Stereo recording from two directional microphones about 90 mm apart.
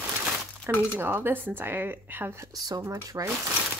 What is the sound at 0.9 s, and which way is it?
Speech, 25° right (ahead or behind).